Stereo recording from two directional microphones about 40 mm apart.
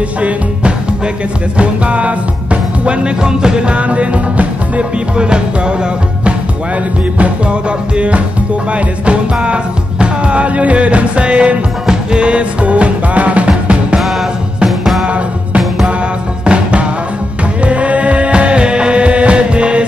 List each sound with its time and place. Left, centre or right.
1.6 s music: right
7.9 s music: right
11.8 s music: centre
16.4 s music: right